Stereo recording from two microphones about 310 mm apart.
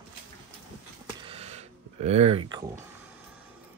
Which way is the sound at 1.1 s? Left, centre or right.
Centre.